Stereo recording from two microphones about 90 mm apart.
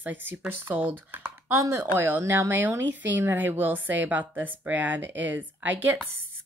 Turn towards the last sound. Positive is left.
turn(degrees=-20)  # may be behind; listen again after turning